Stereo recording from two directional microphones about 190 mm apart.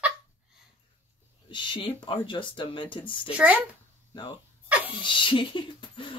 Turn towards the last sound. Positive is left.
turn(degrees=25)  # may be behind; listen again after turning